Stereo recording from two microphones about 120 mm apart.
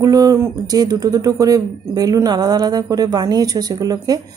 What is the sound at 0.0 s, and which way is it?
Speech, 30° right (ahead or behind).